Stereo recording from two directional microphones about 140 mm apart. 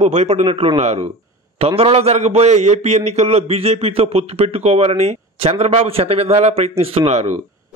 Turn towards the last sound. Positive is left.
turn(degrees=-50)  # may be behind; listen again after turning